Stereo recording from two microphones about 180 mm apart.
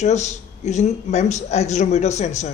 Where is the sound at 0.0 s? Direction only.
40° left (ahead or behind).